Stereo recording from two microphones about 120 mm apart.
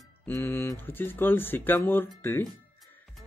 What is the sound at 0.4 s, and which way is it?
A man's voice, 20° left (ahead or behind).